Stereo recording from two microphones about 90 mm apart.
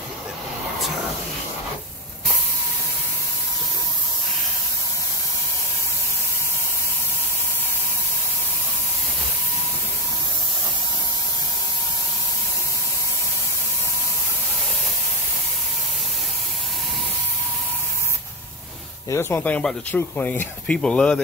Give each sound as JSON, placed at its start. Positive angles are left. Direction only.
{"t": 19.0, "sound": "speech", "side_deg": 30}
{"t": 19.4, "sound": "speech", "side_deg": 15}